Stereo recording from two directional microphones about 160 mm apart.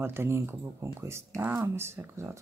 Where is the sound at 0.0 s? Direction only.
15° right (ahead or behind).